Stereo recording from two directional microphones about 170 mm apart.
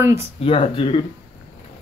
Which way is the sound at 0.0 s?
15° right (ahead or behind).